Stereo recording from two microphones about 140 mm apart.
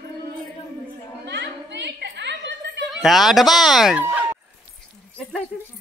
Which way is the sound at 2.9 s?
Centre (ahead or behind).